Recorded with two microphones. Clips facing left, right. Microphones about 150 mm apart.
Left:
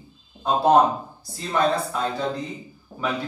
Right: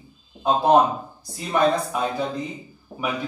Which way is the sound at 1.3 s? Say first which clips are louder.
Right 2 dB; 15° right (ahead or behind).